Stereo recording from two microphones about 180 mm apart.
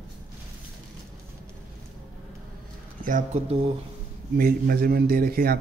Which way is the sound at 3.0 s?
45° right (ahead or behind).